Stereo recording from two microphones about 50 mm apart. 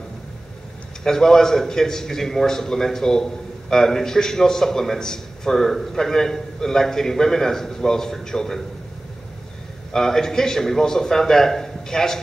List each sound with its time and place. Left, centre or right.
1.0 s a man's voice: centre
9.9 s a man's voice: centre